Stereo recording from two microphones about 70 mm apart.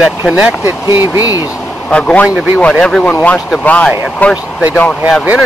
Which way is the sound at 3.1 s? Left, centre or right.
Left.